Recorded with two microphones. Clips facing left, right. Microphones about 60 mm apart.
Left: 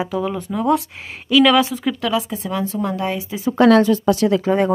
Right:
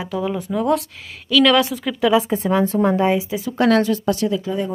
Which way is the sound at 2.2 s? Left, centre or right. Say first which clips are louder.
Right 5 dB; right.